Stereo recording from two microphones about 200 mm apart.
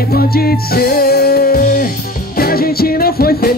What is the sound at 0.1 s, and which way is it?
Music, 50° left (ahead or behind).